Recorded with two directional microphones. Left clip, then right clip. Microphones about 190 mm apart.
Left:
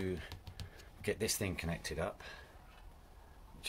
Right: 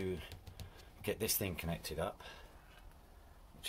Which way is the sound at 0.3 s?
15° left (ahead or behind).